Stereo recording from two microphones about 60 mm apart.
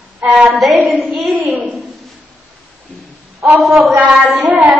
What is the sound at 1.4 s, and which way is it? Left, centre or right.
Speech, right.